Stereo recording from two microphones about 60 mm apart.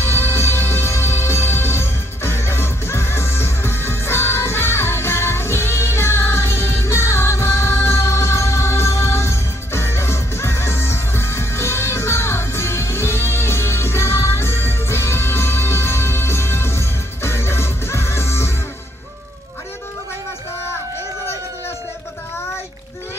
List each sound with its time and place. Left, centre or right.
0.0 s music: left